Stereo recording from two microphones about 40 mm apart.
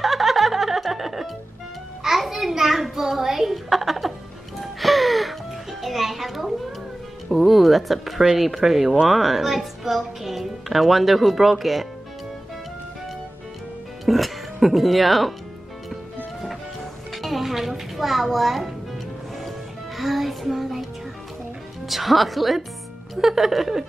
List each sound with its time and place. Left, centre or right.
0.0 s music: centre
2.0 s a sound: centre
4.6 s music: centre
7.2 s a woman's voice: centre
14.0 s speech: centre
17.1 s music: centre
20.0 s child singing: centre
21.8 s a woman's voice: centre